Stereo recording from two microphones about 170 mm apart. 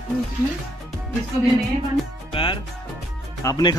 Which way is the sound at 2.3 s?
30° left (ahead or behind).